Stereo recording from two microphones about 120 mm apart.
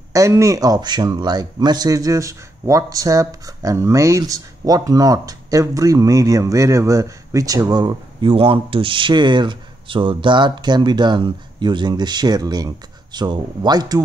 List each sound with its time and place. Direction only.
0.1 s speech: 25° right (ahead or behind)